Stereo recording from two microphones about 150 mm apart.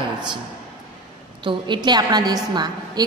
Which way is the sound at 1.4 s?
30° right (ahead or behind).